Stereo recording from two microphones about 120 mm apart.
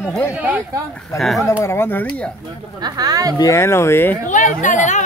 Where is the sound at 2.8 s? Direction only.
30° right (ahead or behind).